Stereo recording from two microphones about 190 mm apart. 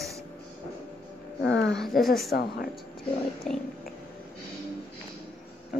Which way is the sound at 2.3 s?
55° left (ahead or behind).